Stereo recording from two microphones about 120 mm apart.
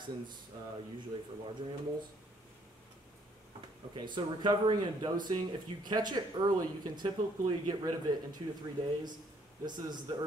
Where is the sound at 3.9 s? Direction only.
40° right (ahead or behind).